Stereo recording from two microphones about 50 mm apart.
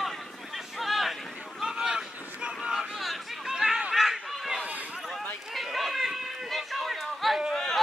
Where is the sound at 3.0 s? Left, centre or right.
Centre.